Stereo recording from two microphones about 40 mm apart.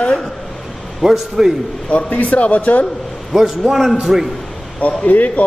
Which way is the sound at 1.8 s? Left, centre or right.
Left.